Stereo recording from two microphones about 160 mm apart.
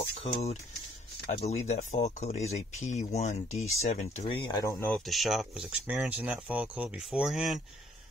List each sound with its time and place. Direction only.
0.2 s speech: 40° left (ahead or behind)
4.6 s speech: 20° left (ahead or behind)
5.0 s speech: centre (ahead or behind)